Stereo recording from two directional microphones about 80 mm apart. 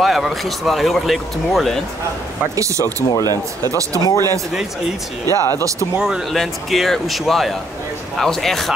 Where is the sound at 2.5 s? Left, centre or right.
Right.